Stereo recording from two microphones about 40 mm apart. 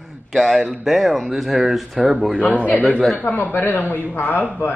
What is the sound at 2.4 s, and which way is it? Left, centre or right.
Speech, left.